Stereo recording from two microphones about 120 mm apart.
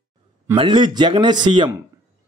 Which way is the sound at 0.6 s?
40° right (ahead or behind).